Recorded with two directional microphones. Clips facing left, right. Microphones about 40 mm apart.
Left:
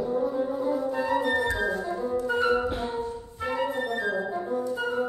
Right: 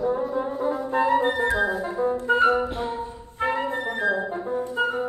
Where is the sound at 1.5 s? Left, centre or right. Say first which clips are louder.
Right 4 dB; centre.